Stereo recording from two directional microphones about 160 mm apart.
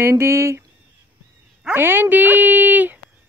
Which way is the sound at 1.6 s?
10° right (ahead or behind).